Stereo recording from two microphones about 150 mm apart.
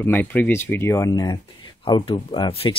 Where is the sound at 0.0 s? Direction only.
10° left (ahead or behind).